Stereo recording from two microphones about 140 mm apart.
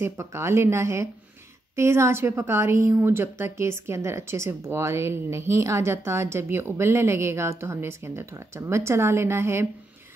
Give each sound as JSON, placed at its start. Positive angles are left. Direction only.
{"t": 0.0, "sound": "a woman's voice", "side_deg": -20}